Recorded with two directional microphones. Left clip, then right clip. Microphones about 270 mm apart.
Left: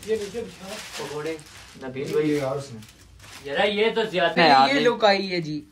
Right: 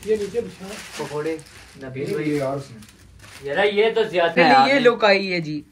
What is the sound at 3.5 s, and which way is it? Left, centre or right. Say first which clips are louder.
Speech: right 3 dB; right.